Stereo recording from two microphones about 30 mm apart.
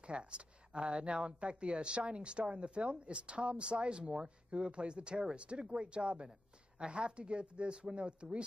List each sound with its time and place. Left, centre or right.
0.0 s speech: right